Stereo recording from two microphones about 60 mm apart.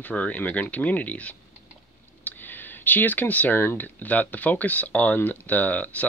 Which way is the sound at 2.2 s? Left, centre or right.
Left.